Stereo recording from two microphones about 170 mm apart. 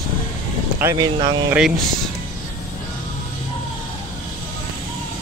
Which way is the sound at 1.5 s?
5° right (ahead or behind).